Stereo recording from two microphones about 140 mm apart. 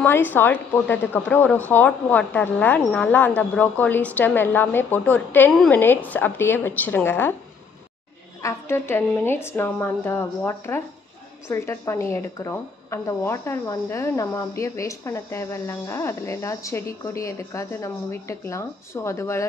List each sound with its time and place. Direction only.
0.0 s speech: 15° left (ahead or behind)
8.4 s a woman's voice: 20° left (ahead or behind)